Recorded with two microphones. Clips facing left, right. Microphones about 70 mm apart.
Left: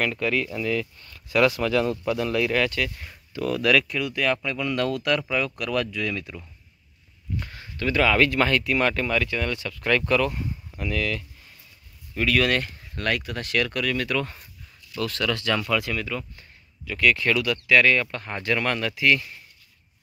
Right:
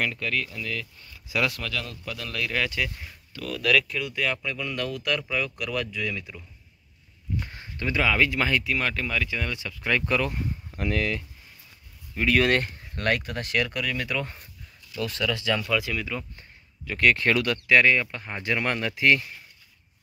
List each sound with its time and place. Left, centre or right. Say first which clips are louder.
0.0 s speech: left 4 dB; centre
1.0 s speech: left 6 dB; centre
1.6 s speech: left 11 dB; left
2.4 s speech: left 2 dB; centre
2.7 s speech: left 2 dB; centre
3.3 s speech: left 7 dB; left
3.6 s speech: left 1 dB; centre
7.4 s a sound: left 7 dB; right
7.9 s speech: left 3 dB; centre
10.8 s speech: right 1 dB; right
12.3 s speech: right 1 dB; right; by 16.1 s centre
16.3 s speech: even; right
17.7 s speech: left 1 dB; centre